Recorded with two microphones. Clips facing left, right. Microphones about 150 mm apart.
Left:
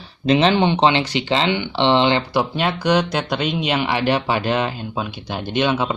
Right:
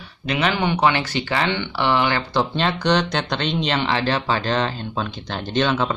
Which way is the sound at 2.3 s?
10° left (ahead or behind).